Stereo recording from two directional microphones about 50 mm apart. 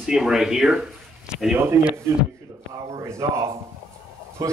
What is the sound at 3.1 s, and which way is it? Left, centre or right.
Speech, right.